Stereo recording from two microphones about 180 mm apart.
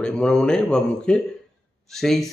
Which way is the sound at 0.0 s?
5° left (ahead or behind).